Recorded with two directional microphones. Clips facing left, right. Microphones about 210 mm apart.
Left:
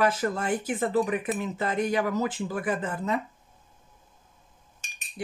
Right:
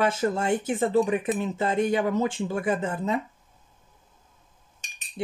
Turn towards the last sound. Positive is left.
turn(degrees=-25)  # may be behind; listen again after turning